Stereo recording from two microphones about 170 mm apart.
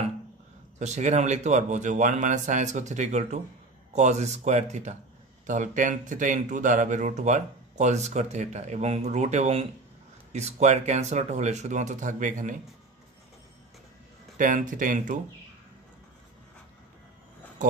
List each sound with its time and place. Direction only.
0.7 s speech: 45° right (ahead or behind)
14.4 s speech: 50° right (ahead or behind)
17.6 s speech: 50° right (ahead or behind)